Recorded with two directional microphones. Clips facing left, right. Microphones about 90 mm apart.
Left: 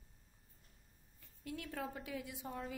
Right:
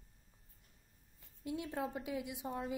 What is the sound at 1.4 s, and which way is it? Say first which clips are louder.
A woman's voice: right 4 dB; 20° right (ahead or behind).